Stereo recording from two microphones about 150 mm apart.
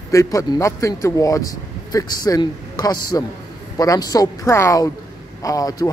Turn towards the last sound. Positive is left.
turn(degrees=25)  # may be behind; listen again after turning